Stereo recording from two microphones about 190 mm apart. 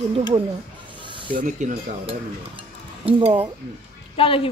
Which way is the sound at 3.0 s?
30° right (ahead or behind).